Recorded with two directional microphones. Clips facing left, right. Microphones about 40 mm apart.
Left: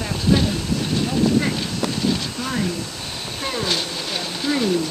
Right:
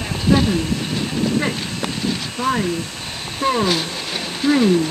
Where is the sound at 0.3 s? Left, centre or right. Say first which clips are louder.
Right 3 dB; centre.